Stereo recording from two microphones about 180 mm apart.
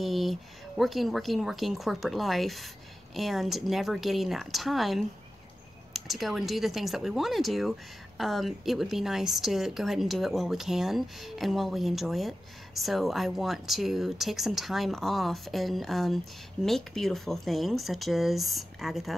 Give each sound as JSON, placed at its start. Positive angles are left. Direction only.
{"t": 0.0, "sound": "speech", "side_deg": 0}